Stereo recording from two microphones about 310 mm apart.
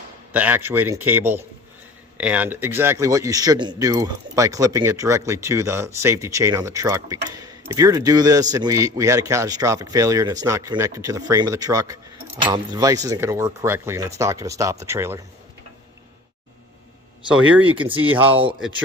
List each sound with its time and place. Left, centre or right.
0.3 s speech: centre
17.7 s speech: centre